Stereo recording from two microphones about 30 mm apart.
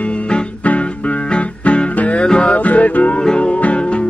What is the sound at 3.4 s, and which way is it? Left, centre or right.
Music, left.